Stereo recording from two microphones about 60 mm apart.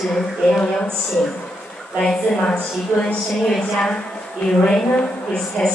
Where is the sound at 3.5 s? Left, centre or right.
Centre.